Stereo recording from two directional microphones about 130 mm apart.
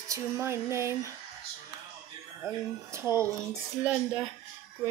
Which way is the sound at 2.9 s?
20° right (ahead or behind).